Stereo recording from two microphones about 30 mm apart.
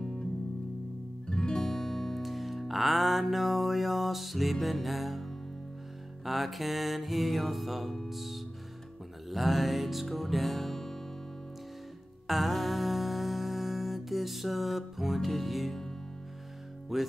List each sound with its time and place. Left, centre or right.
1.2 s music: left
2.2 s music: centre
6.2 s music: centre
12.3 s music: centre
16.9 s music: centre